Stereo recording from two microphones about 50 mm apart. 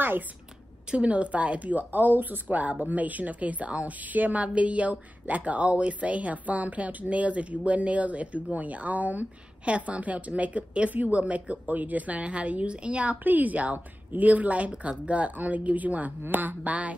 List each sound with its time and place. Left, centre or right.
0.9 s speech: right